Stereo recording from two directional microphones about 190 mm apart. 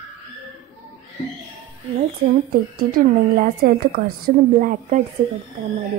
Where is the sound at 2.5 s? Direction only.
50° right (ahead or behind).